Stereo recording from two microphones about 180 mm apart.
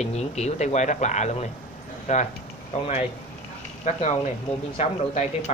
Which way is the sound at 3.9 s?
40° left (ahead or behind).